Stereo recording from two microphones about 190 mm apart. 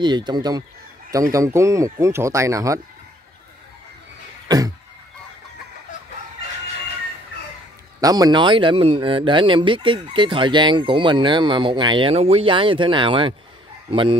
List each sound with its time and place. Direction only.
0.0 s speech: 25° right (ahead or behind)
4.5 s a sound: 20° right (ahead or behind)
8.0 s speech: 20° right (ahead or behind)